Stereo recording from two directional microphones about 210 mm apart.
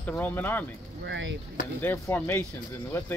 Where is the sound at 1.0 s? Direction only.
60° right (ahead or behind).